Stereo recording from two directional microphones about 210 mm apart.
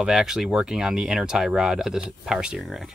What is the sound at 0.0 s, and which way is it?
Speech, centre (ahead or behind).